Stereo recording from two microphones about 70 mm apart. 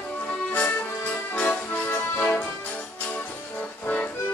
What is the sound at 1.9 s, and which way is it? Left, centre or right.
Music, left.